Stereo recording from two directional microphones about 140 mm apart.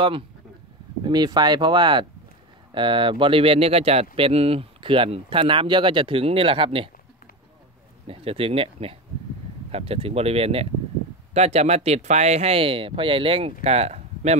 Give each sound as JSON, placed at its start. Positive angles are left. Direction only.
{"t": 1.0, "sound": "speech", "side_deg": -30}
{"t": 8.1, "sound": "speech", "side_deg": -45}